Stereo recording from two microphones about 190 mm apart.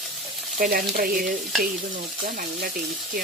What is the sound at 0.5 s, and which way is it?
Speech, 50° right (ahead or behind).